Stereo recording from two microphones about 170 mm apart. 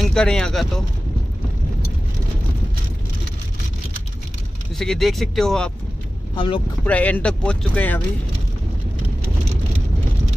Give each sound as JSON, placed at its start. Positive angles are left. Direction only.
{"t": 0.0, "sound": "speech", "side_deg": 5}
{"t": 4.7, "sound": "speech", "side_deg": 0}
{"t": 6.3, "sound": "speech", "side_deg": 30}
{"t": 6.9, "sound": "speech", "side_deg": 10}